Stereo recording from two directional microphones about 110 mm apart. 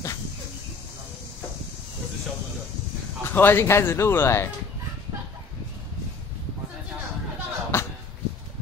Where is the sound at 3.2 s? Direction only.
20° left (ahead or behind).